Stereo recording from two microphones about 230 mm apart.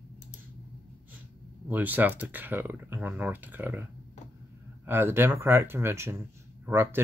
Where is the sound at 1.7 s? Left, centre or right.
Centre.